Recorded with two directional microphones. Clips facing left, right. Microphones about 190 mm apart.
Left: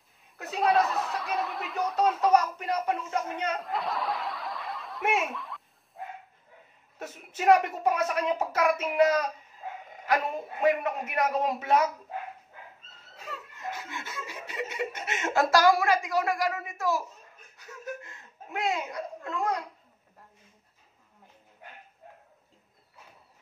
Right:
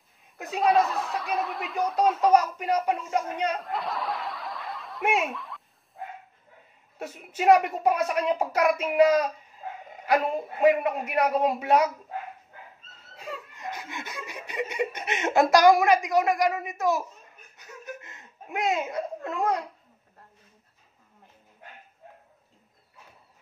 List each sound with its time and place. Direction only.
0.6 s snicker: centre (ahead or behind)
2.6 s speech: 15° right (ahead or behind)
3.5 s snicker: centre (ahead or behind)
5.2 s a child's voice: centre (ahead or behind)
7.0 s speech: 10° right (ahead or behind)
13.2 s chuckle: 15° right (ahead or behind)